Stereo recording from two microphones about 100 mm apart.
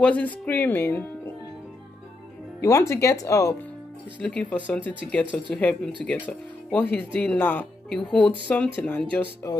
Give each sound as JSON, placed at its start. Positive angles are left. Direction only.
{"t": 0.0, "sound": "speech", "side_deg": 15}
{"t": 2.6, "sound": "speech", "side_deg": 30}
{"t": 4.2, "sound": "speech", "side_deg": 10}